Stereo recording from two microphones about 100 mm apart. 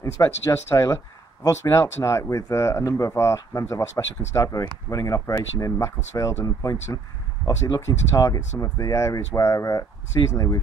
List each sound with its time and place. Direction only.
0.0 s speech: 30° left (ahead or behind)